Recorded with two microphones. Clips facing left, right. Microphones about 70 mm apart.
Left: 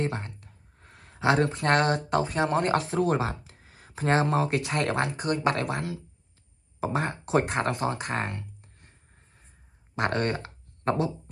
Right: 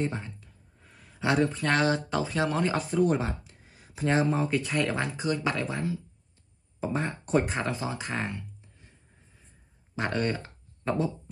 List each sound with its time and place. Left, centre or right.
0.0 s a sound: left
1.7 s speech: left
9.9 s speech: left